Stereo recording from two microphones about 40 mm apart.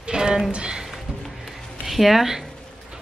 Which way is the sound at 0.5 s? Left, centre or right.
Right.